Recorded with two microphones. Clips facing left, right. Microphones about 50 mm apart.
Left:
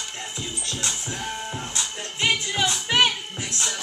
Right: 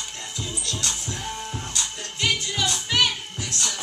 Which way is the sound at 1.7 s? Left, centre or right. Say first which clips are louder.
Left 1 dB; left.